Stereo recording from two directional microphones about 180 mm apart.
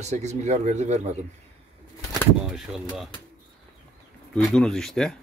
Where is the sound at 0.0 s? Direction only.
40° right (ahead or behind).